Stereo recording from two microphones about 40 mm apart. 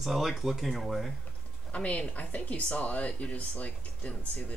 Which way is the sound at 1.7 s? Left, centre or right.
Left.